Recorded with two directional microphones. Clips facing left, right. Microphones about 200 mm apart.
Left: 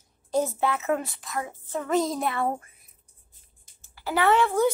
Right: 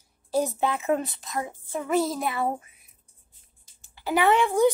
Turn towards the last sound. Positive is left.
turn(degrees=-15)  # may be behind; listen again after turning